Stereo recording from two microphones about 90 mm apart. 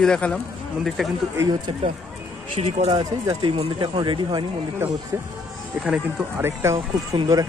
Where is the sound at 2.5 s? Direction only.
75° right (ahead or behind); by 4.5 s 60° right (ahead or behind).